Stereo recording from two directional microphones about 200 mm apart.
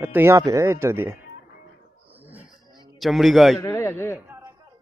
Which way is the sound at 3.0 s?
Centre (ahead or behind).